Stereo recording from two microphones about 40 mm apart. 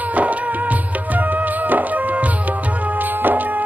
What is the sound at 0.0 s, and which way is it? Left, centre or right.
Music, right.